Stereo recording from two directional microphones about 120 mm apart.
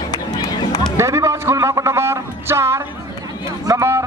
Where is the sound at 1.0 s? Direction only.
25° right (ahead or behind).